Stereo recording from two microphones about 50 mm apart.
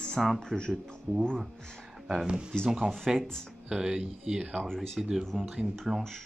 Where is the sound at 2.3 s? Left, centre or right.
Centre.